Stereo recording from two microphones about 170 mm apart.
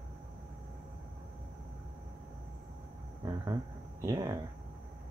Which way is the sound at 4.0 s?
20° right (ahead or behind).